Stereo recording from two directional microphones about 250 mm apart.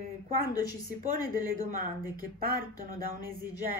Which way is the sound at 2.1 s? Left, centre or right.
Right.